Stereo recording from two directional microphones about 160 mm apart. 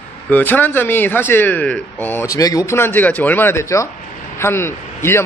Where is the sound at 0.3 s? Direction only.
10° left (ahead or behind).